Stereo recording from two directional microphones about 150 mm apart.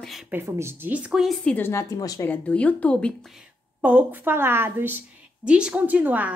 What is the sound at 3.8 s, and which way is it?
A woman's voice, 10° right (ahead or behind).